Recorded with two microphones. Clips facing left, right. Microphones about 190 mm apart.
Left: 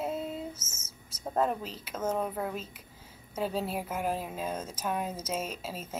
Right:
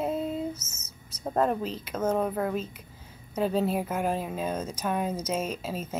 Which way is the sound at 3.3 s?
5° left (ahead or behind).